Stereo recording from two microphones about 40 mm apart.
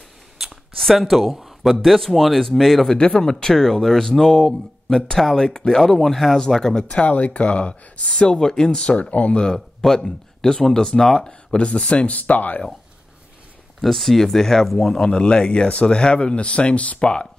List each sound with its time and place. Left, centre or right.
0.7 s speech: centre
2.9 s speech: centre
7.0 s speech: left; by 8.8 s centre
9.1 s speech: left
9.4 s speech: centre
11.5 s speech: left
13.7 s speech: centre
15.0 s speech: left
17.0 s speech: left